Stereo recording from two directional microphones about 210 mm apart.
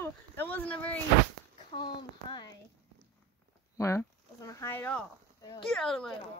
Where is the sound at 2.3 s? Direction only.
20° left (ahead or behind).